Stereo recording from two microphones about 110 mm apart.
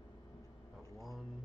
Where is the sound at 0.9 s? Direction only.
Centre (ahead or behind).